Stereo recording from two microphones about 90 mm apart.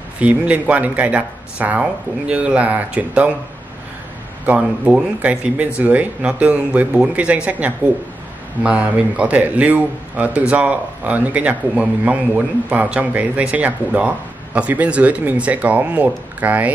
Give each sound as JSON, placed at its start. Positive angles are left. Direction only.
{"t": 0.2, "sound": "speech", "side_deg": -15}
{"t": 4.5, "sound": "speech", "side_deg": -15}